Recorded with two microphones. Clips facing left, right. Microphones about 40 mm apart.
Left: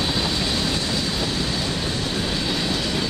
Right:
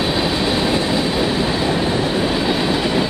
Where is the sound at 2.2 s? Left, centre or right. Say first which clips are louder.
Right 7 dB; right.